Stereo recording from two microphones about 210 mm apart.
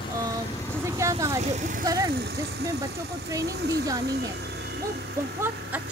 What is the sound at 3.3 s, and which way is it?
Speech, 15° right (ahead or behind).